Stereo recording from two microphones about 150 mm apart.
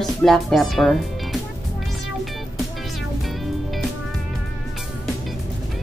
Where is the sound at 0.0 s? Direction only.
Centre (ahead or behind).